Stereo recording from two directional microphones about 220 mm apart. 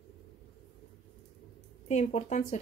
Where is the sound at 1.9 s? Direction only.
30° left (ahead or behind).